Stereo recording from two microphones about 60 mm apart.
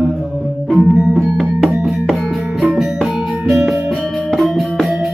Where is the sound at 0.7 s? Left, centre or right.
Centre.